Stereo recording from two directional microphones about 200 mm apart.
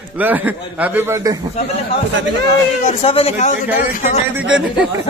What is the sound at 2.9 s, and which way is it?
A man's voice, 30° left (ahead or behind).